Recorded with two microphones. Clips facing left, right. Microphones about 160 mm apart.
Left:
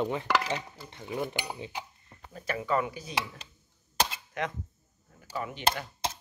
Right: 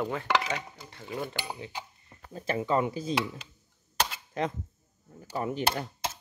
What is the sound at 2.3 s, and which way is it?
Speech, 30° right (ahead or behind).